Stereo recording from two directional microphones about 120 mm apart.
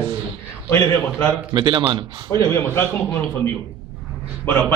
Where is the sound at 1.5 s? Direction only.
40° right (ahead or behind).